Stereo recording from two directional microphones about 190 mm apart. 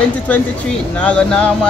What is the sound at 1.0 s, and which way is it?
Speech, 5° left (ahead or behind).